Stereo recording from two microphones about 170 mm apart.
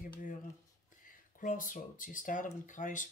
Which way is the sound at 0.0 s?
50° left (ahead or behind).